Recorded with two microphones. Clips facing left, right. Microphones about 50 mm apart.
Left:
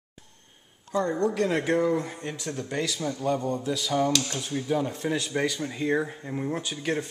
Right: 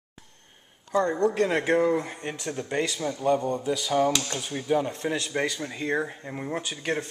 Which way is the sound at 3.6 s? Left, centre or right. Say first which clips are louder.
Right 2 dB; centre.